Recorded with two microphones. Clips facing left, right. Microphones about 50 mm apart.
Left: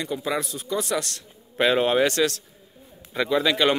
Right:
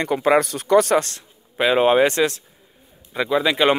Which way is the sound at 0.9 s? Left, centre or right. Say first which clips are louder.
Right 8 dB; right.